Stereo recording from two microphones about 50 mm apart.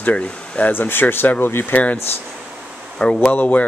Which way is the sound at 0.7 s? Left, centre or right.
Left.